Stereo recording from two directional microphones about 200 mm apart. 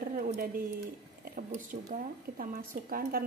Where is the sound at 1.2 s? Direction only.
45° right (ahead or behind).